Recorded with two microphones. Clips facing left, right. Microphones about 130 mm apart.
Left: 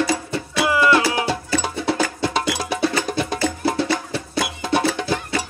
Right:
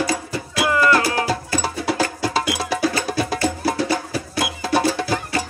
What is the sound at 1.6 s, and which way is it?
Music, 5° right (ahead or behind).